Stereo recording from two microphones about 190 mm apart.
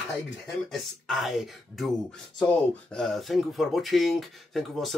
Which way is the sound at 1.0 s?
Centre (ahead or behind).